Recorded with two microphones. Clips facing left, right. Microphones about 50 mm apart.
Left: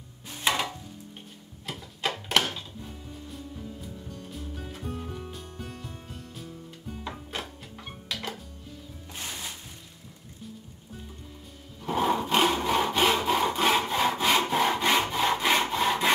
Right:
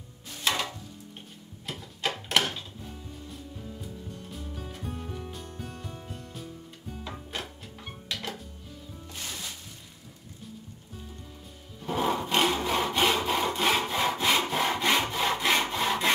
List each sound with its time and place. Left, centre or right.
0.4 s chopping: centre
2.0 s a sound: centre
4.3 s music: centre
7.1 s music: centre
9.1 s music: centre
11.8 s sawing: centre